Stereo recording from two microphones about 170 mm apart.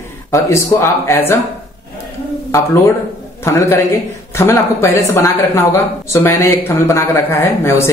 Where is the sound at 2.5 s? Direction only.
15° left (ahead or behind).